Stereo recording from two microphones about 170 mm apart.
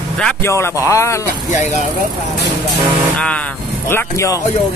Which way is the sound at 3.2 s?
5° left (ahead or behind).